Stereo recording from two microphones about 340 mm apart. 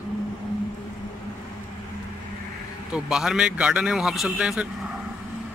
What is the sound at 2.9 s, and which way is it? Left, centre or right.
Speech, centre.